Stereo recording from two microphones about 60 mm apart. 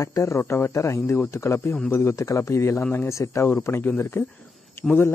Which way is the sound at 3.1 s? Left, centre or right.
Left.